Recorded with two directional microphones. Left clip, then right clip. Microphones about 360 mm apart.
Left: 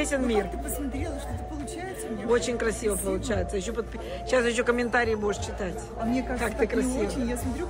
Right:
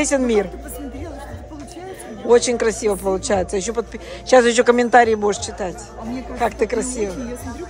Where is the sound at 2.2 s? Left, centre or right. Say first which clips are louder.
Right 10 dB; centre.